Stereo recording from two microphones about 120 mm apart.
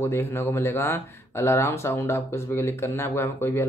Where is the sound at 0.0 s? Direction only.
20° left (ahead or behind).